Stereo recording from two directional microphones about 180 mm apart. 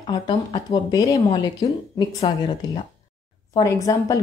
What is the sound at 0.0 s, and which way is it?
A woman's voice, 30° left (ahead or behind).